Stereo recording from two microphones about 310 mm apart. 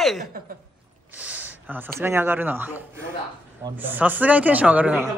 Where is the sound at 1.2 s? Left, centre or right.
Centre.